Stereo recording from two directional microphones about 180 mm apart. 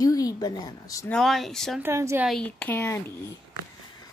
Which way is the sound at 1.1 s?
Centre (ahead or behind).